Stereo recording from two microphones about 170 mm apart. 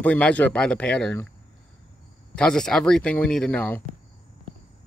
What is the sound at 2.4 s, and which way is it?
Speech, 5° left (ahead or behind).